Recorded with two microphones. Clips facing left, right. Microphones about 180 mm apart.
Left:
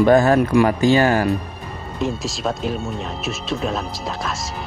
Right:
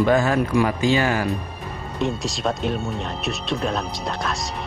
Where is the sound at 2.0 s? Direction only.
Centre (ahead or behind).